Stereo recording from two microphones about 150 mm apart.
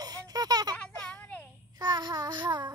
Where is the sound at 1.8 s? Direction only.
30° right (ahead or behind).